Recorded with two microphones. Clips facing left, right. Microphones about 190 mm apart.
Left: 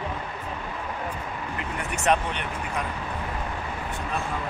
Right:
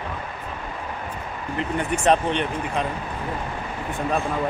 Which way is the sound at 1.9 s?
30° right (ahead or behind).